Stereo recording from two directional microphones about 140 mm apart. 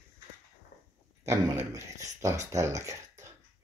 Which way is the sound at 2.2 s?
20° right (ahead or behind).